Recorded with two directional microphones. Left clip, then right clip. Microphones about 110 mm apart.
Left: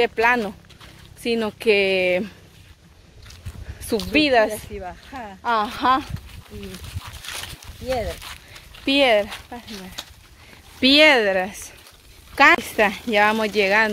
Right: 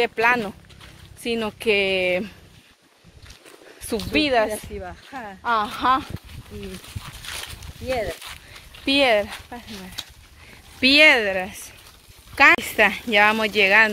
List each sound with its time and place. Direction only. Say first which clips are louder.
0.0 s speech: left 1 dB; 20° left (ahead or behind)
1.2 s speech: left 3 dB; 30° left (ahead or behind)
4.1 s speech: left 2 dB; 35° left (ahead or behind)
4.8 s speech: left 1 dB; 90° right
5.4 s speech: left 1 dB; 30° left (ahead or behind)
6.5 s speech: right 1 dB; 30° right (ahead or behind)
7.3 s a sound: left 1 dB; 30° right (ahead or behind)
7.8 s speech: left 1 dB; 40° right (ahead or behind)
8.7 s speech: left 1 dB; 5° left (ahead or behind)
10.8 s speech: even; 35° left (ahead or behind); by 11.6 s 60° left (ahead or behind)
12.5 s speech: right 1 dB; 20° left (ahead or behind)